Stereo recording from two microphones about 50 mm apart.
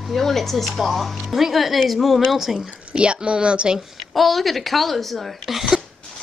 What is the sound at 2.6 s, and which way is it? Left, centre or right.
Speech, centre.